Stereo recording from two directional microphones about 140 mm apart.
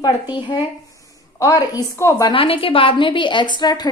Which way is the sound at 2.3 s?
40° left (ahead or behind).